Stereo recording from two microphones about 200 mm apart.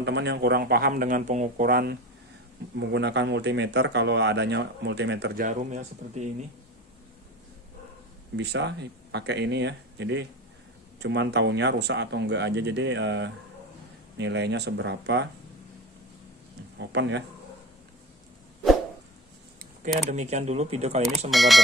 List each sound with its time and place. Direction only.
0.0 s speech: 60° right (ahead or behind)
2.9 s a man's voice: 60° right (ahead or behind)
5.4 s speech: 35° right (ahead or behind)
8.4 s a man's voice: 60° right (ahead or behind)
16.7 s speech: 60° right (ahead or behind)
20.1 s speech: 35° right (ahead or behind)
21.3 s speech: centre (ahead or behind)